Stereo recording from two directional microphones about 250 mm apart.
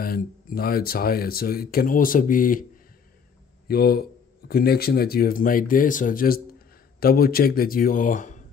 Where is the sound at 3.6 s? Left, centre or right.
Left.